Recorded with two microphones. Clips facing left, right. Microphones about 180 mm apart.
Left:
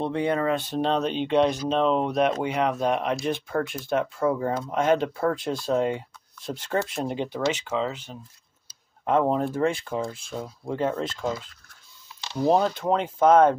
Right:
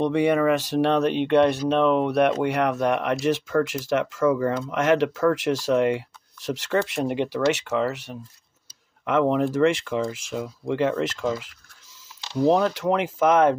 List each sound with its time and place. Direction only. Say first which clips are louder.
0.0 s speech: right 5 dB; 85° right